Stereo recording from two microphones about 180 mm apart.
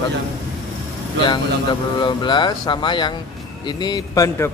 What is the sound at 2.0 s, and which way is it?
Speech, 25° left (ahead or behind).